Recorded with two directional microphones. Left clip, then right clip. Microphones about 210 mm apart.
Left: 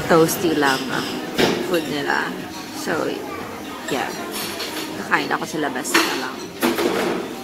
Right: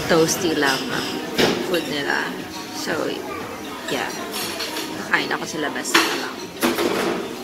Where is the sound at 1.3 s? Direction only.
10° left (ahead or behind).